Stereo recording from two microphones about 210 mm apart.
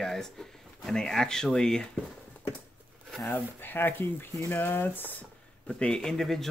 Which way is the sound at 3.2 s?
10° left (ahead or behind).